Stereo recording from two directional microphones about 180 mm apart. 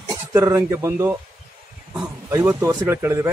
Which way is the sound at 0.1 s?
15° right (ahead or behind).